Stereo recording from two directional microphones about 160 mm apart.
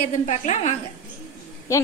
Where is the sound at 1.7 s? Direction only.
20° left (ahead or behind).